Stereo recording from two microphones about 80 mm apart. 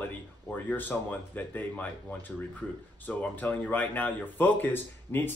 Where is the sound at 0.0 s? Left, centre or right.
Left.